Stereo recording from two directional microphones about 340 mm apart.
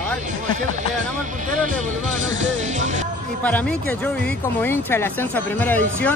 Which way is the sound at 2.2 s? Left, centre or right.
Right.